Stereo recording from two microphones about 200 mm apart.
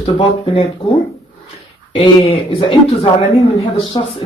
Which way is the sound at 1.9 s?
25° left (ahead or behind).